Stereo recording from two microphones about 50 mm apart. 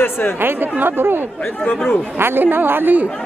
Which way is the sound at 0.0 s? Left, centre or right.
Left.